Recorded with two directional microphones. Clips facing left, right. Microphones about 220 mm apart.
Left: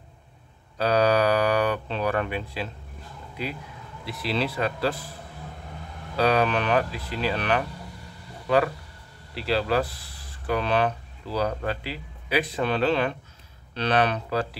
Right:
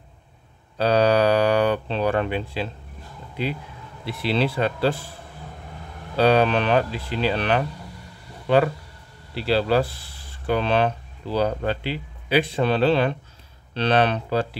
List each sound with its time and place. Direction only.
0.7 s speech: 30° right (ahead or behind)
4.0 s speech: 25° right (ahead or behind)
6.1 s speech: 30° right (ahead or behind)
9.3 s speech: 30° right (ahead or behind)